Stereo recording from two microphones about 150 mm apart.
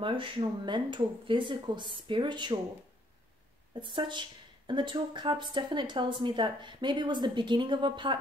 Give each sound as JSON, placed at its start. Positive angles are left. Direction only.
{"t": 0.0, "sound": "speech", "side_deg": -35}
{"t": 3.8, "sound": "speech", "side_deg": -30}